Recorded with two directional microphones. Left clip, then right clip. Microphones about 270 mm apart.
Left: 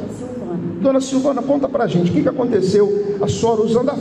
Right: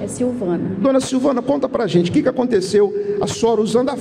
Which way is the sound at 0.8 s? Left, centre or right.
Right.